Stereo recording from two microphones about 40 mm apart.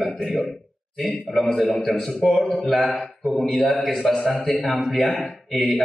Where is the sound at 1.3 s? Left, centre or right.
Left.